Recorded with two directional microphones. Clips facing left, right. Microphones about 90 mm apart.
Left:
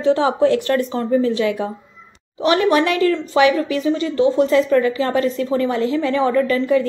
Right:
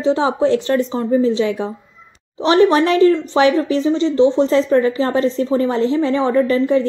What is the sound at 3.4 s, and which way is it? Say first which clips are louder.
A woman's voice: even; 30° right (ahead or behind).